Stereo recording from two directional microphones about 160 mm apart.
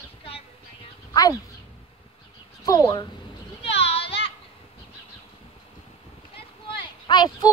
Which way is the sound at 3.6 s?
40° left (ahead or behind).